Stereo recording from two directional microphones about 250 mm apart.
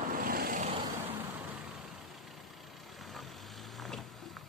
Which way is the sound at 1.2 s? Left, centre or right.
Centre.